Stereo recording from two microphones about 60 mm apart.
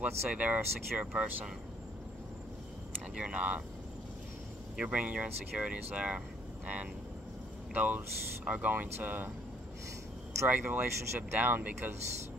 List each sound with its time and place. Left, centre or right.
0.0 s speech: right
3.2 s speech: centre
4.8 s speech: right
10.5 s speech: right